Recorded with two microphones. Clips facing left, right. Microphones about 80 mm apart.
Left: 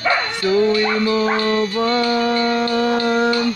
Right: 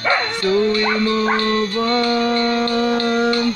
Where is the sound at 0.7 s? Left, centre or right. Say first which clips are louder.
Left 1 dB; right.